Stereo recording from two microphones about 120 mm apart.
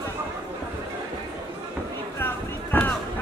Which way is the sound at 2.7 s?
15° left (ahead or behind).